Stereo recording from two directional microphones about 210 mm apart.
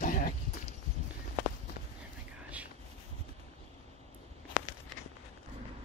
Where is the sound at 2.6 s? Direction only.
5° right (ahead or behind).